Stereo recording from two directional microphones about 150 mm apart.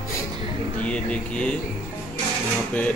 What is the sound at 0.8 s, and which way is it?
Speech, 10° left (ahead or behind).